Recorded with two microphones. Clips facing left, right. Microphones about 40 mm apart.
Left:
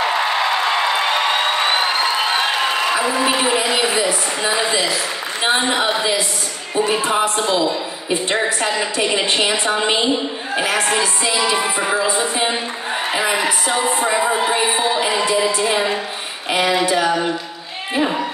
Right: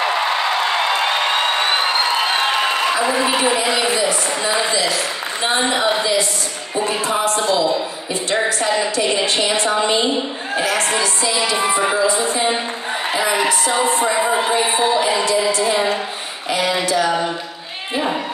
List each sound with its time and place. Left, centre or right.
5.5 s a woman's voice: left
7.1 s a woman's voice: left